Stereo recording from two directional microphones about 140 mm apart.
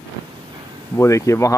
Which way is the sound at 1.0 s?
20° left (ahead or behind).